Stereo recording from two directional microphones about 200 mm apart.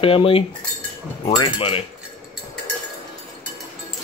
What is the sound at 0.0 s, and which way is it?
Speech, 30° left (ahead or behind).